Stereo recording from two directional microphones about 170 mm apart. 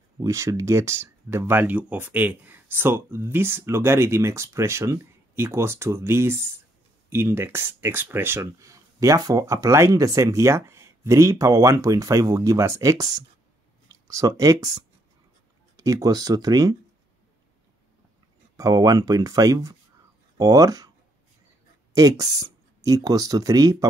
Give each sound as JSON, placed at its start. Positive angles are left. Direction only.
{"t": 0.2, "sound": "speech", "side_deg": -20}
{"t": 15.7, "sound": "speech", "side_deg": -20}
{"t": 18.6, "sound": "speech", "side_deg": -25}
{"t": 21.9, "sound": "speech", "side_deg": -20}